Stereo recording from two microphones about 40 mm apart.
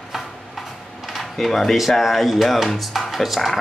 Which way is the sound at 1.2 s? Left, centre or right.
Centre.